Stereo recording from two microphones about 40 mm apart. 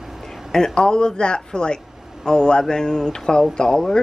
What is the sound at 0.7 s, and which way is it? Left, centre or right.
Speech, left.